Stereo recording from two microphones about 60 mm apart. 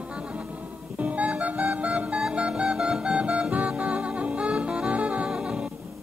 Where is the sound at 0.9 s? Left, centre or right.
Right.